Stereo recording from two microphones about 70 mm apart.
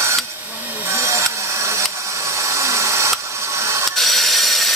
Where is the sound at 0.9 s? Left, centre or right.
Right.